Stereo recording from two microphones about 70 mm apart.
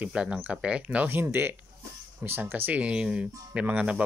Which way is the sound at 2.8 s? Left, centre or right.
Centre.